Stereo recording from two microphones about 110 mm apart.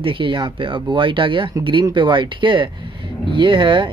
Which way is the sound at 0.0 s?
50° right (ahead or behind).